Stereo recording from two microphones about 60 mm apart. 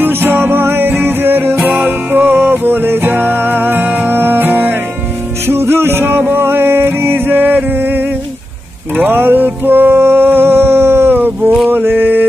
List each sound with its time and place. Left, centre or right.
0.0 s music: right
8.9 s a sound: right
11.7 s mantra: right